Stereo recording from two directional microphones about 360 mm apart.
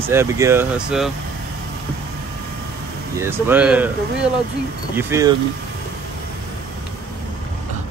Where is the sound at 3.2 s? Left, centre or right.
Centre.